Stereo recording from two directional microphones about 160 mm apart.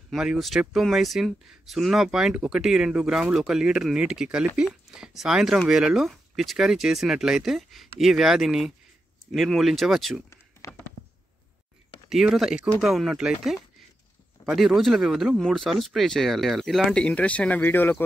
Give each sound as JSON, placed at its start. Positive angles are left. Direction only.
{"t": 0.1, "sound": "speech", "side_deg": 0}
{"t": 10.6, "sound": "a sound", "side_deg": 20}
{"t": 12.1, "sound": "speech", "side_deg": 0}